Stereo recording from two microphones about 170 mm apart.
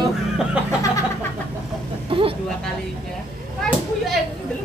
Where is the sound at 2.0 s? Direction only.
30° right (ahead or behind).